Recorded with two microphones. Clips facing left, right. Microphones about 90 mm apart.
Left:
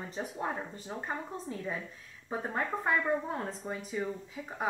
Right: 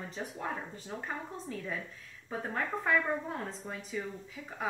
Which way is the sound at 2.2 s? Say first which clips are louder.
Left 2 dB; 20° left (ahead or behind).